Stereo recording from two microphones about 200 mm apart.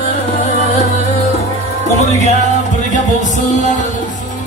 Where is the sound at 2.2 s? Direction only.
35° left (ahead or behind).